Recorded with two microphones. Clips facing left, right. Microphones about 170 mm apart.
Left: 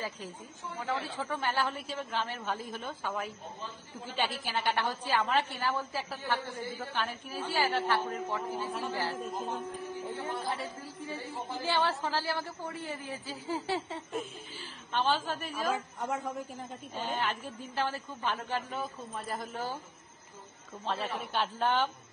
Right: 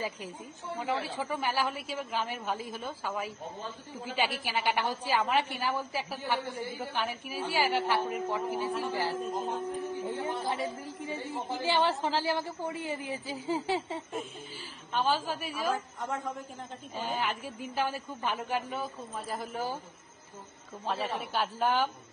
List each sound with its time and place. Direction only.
0.7 s a woman's voice: 15° right (ahead or behind)
16.0 s a man's voice: 10° left (ahead or behind)
16.9 s a woman's voice: 10° right (ahead or behind)
20.8 s a woman's voice: 10° right (ahead or behind)